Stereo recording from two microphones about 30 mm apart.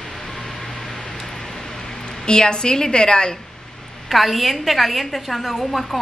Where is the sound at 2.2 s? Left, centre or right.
Left.